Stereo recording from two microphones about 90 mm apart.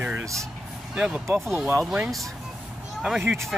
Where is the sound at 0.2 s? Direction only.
35° right (ahead or behind).